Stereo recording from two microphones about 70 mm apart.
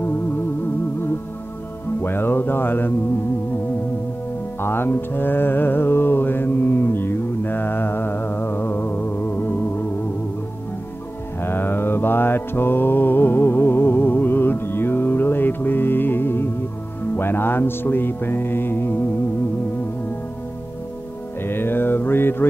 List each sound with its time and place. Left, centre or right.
2.0 s music: left
4.6 s music: left
11.4 s mantra: left
17.2 s music: left
21.4 s mantra: left